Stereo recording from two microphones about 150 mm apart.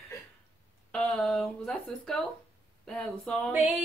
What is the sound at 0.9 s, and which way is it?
Speech, 5° left (ahead or behind).